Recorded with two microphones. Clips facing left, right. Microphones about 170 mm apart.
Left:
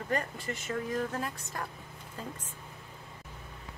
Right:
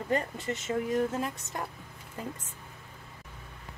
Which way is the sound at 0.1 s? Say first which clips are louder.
Right 3 dB; 20° right (ahead or behind).